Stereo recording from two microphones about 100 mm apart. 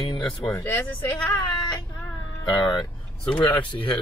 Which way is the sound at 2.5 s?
50° left (ahead or behind).